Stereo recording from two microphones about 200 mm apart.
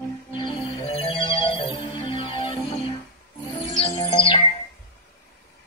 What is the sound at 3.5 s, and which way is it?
Music, 15° left (ahead or behind).